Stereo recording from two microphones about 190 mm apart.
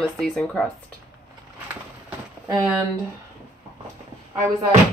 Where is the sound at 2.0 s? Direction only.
15° right (ahead or behind).